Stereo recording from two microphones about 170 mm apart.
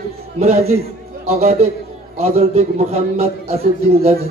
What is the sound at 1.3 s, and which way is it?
A man's voice, 40° right (ahead or behind).